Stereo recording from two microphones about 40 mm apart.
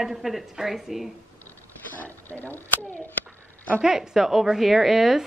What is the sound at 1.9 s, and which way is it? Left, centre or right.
Speech, left.